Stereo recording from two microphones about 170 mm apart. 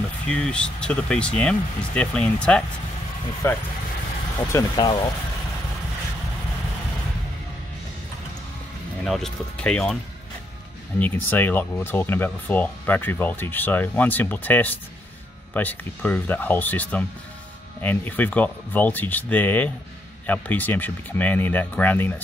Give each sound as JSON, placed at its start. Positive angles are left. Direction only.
{"t": 0.3, "sound": "speech", "side_deg": 5}
{"t": 9.0, "sound": "speech", "side_deg": 0}
{"t": 11.0, "sound": "speech", "side_deg": 10}